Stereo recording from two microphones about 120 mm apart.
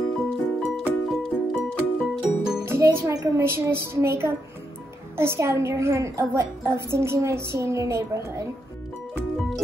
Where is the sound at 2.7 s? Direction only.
20° right (ahead or behind).